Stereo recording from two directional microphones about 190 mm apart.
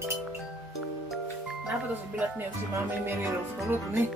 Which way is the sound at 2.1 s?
10° right (ahead or behind).